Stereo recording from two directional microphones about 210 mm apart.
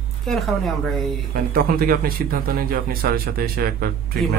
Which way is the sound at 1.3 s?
45° right (ahead or behind).